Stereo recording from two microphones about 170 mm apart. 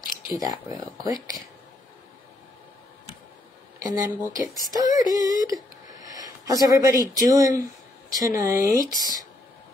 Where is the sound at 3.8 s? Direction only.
20° right (ahead or behind).